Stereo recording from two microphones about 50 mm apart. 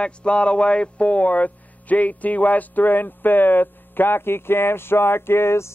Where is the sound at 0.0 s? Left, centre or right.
Left.